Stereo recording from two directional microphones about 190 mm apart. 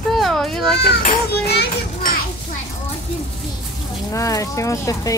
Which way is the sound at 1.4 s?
60° left (ahead or behind).